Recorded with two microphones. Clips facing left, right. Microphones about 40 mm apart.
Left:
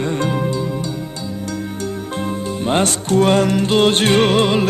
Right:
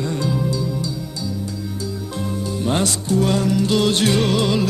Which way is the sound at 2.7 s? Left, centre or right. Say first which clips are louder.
Left 4 dB; left.